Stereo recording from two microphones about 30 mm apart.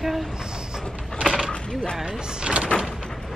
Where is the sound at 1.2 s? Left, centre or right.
Centre.